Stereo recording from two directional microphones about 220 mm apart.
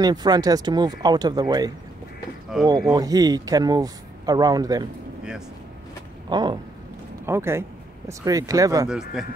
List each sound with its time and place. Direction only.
0.0 s speech: 20° right (ahead or behind)
2.5 s speech: 5° right (ahead or behind)
2.9 s speech: 15° right (ahead or behind)
6.2 s speech: 20° right (ahead or behind)
8.8 s speech: 5° right (ahead or behind)